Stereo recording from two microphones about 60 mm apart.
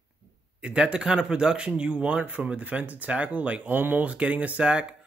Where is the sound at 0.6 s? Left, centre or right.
Centre.